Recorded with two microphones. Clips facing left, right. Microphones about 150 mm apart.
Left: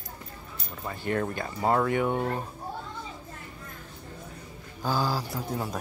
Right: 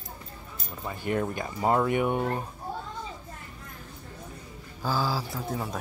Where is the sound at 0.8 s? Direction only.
15° right (ahead or behind).